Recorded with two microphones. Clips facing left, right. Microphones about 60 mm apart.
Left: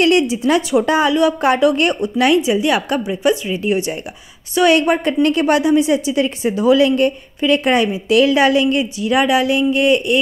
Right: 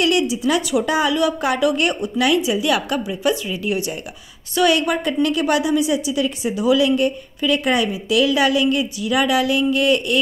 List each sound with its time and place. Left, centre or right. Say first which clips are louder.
0.0 s a woman's voice: left 4 dB; left